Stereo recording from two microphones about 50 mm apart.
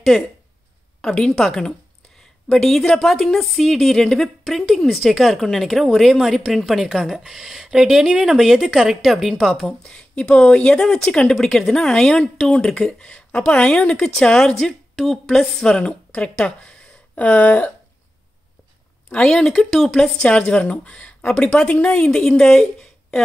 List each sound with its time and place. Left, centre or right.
0.1 s a woman's voice: centre
1.4 s a woman's voice: centre
2.1 s a sound: centre
3.0 s a woman's voice: centre
9.8 s a woman's voice: centre
15.7 s speech: left
19.2 s a woman's voice: centre